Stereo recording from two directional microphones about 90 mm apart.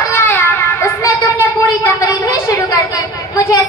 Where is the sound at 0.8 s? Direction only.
30° left (ahead or behind).